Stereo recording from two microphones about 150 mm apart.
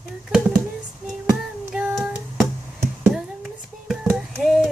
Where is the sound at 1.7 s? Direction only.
5° right (ahead or behind).